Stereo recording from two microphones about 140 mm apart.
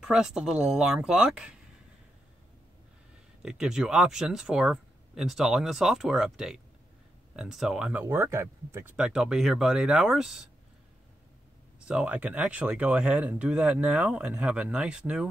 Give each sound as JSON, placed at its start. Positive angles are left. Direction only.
{"t": 0.0, "sound": "speech", "side_deg": -5}
{"t": 3.4, "sound": "speech", "side_deg": -5}
{"t": 7.9, "sound": "speech", "side_deg": -15}
{"t": 8.9, "sound": "speech", "side_deg": -5}
{"t": 11.8, "sound": "speech", "side_deg": -10}